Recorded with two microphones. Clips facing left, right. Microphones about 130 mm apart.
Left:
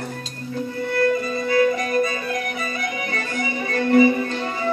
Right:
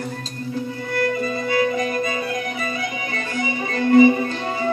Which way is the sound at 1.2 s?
25° right (ahead or behind).